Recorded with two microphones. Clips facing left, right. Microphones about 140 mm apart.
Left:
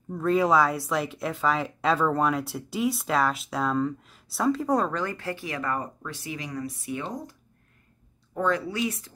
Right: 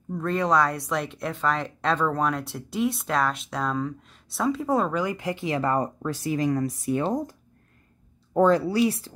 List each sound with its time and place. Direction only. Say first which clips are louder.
0.1 s speech: left 2 dB; 5° left (ahead or behind); by 9.1 s 30° right (ahead or behind)